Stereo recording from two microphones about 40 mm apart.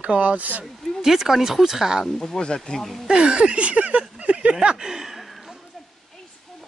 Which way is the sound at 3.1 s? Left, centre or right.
Right.